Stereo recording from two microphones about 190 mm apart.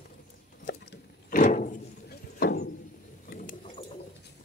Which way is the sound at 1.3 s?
45° left (ahead or behind).